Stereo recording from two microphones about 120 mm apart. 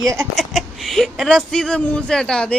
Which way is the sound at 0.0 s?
25° right (ahead or behind).